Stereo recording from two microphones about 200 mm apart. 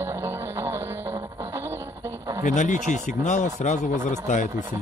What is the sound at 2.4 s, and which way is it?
Speech, 40° left (ahead or behind).